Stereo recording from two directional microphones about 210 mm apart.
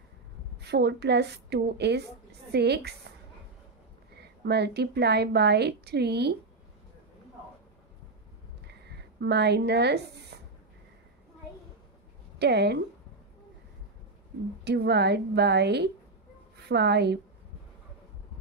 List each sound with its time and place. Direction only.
0.6 s a woman's voice: 50° right (ahead or behind)
4.2 s a woman's voice: 50° right (ahead or behind)
9.2 s a woman's voice: 55° right (ahead or behind)
12.4 s a woman's voice: 50° right (ahead or behind)
14.6 s a woman's voice: 50° right (ahead or behind)